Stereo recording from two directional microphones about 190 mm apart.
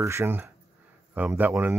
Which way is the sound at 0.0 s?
15° right (ahead or behind).